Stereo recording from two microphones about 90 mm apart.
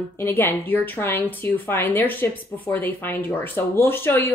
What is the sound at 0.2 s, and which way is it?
A woman's voice, 25° left (ahead or behind).